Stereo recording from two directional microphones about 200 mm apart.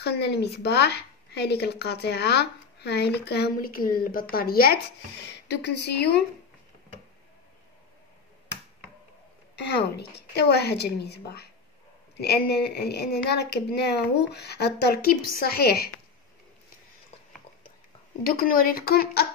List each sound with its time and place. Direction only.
0.0 s a woman's voice: 55° left (ahead or behind)
9.6 s speech: 55° left (ahead or behind)
18.2 s a woman's voice: 45° left (ahead or behind)